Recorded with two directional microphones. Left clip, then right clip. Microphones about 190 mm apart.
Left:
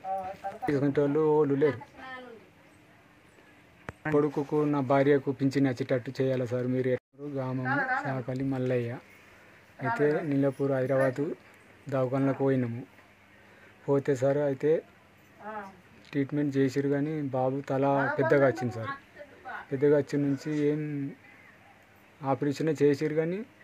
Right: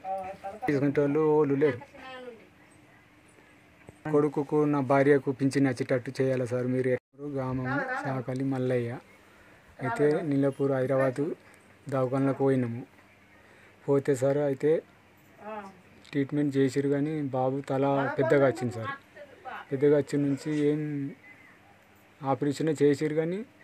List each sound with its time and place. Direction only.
0.7 s speech: 10° right (ahead or behind)
4.0 s speech: 15° right (ahead or behind)
7.6 s speech: 40° right (ahead or behind)
8.1 s speech: 15° right (ahead or behind)
13.8 s speech: 15° right (ahead or behind)
16.1 s speech: 10° right (ahead or behind)
19.7 s speech: 10° right (ahead or behind)
22.2 s speech: 10° right (ahead or behind)